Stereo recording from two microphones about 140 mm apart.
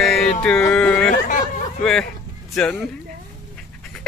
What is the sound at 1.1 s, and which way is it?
Speech, 65° left (ahead or behind).